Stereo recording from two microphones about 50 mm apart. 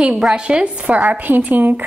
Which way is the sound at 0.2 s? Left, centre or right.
Centre.